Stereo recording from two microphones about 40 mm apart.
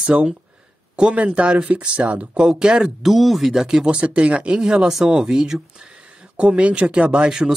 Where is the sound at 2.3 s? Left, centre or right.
Centre.